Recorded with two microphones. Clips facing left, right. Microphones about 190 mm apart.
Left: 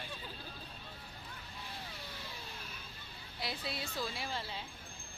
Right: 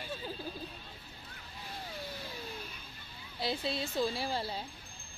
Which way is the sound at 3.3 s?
25° right (ahead or behind).